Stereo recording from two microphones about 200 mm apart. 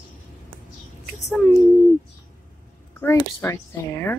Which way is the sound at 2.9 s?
15° left (ahead or behind).